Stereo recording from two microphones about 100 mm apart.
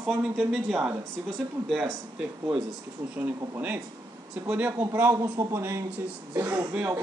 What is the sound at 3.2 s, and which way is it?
Speech, 20° right (ahead or behind).